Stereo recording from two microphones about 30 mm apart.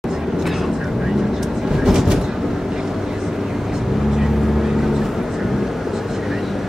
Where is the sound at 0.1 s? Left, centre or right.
Centre.